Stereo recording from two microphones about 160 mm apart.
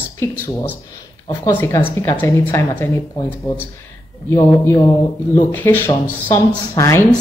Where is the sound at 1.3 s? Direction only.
15° left (ahead or behind).